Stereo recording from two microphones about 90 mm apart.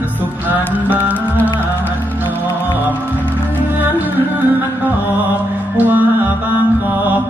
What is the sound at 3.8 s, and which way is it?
Music, 20° right (ahead or behind).